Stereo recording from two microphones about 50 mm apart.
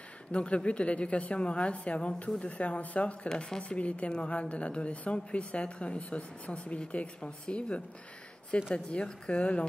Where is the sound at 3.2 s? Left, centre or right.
Centre.